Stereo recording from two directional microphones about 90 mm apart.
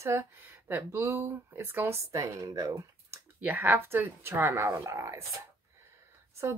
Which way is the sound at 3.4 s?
20° right (ahead or behind).